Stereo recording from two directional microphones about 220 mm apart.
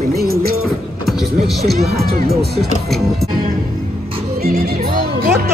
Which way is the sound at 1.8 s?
45° right (ahead or behind).